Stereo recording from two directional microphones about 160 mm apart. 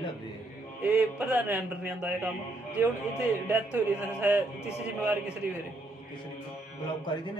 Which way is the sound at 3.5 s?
10° right (ahead or behind).